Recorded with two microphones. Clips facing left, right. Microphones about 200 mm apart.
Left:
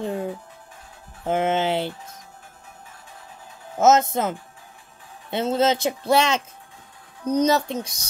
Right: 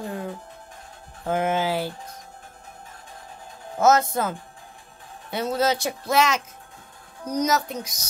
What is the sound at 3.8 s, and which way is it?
A child's voice, 20° left (ahead or behind).